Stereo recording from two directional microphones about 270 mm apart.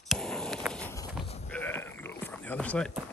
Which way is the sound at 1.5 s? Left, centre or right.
Centre.